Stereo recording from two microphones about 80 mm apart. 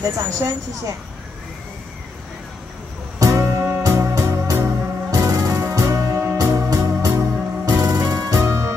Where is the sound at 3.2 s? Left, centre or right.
Right.